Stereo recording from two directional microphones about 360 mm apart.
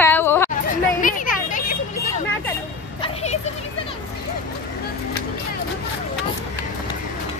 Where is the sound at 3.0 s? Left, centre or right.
Centre.